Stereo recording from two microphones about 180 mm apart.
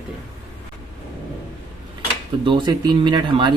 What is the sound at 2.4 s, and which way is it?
Speech, 25° right (ahead or behind).